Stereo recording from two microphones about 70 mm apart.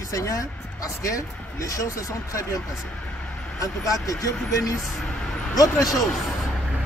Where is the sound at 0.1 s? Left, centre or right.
Left.